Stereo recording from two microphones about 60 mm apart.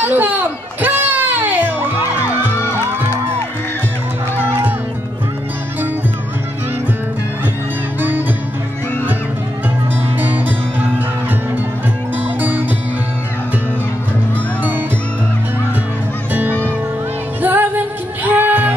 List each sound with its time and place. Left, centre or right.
0.0 s music: right
4.4 s music: right
10.2 s music: right
12.4 s music: right
16.3 s music: right